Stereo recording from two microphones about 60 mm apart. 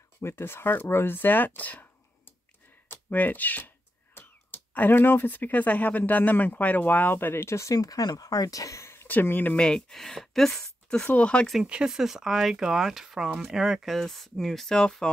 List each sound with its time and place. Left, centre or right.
0.2 s speech: left
7.5 s speech: left
8.9 s speech: left
9.6 s speech: centre
11.1 s speech: left
11.6 s speech: centre
11.9 s speech: centre
13.9 s speech: centre